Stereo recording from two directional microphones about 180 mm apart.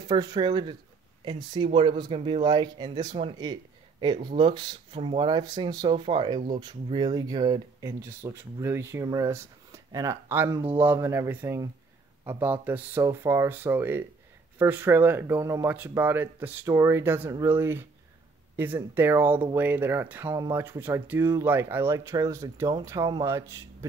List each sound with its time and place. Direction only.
0.1 s speech: 25° right (ahead or behind)